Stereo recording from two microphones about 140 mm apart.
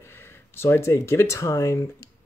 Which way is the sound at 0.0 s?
15° left (ahead or behind).